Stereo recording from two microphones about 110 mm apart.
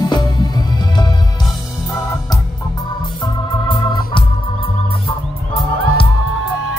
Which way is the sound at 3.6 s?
50° left (ahead or behind).